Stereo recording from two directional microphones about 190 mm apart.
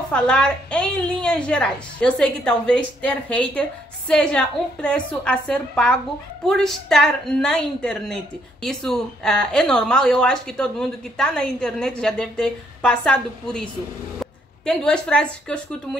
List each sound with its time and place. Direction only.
0.1 s speech: 5° left (ahead or behind)